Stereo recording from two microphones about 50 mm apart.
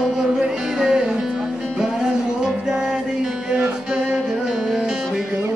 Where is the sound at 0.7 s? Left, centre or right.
Centre.